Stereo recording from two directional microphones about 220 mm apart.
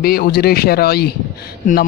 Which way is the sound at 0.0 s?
45° left (ahead or behind).